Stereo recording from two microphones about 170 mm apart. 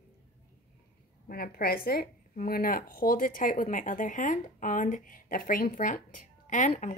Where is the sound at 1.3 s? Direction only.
60° left (ahead or behind).